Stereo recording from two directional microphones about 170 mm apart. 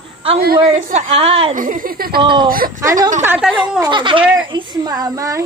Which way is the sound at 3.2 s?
10° right (ahead or behind).